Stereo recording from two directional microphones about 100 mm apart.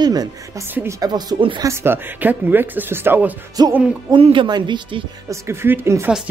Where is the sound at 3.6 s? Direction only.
45° right (ahead or behind).